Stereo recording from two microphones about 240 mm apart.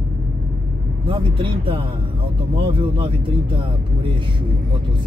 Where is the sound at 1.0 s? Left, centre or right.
Right.